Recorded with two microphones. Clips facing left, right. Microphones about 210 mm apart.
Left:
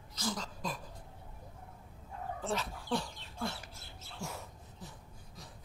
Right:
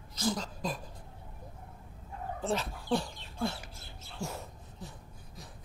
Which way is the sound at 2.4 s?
25° right (ahead or behind).